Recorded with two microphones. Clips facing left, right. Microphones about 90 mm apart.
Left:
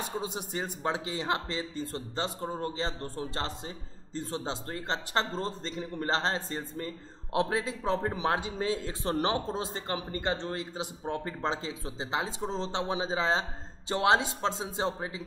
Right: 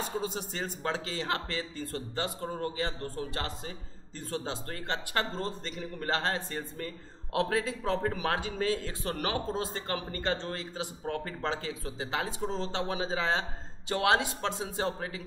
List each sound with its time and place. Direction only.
0.2 s a man's voice: 15° left (ahead or behind)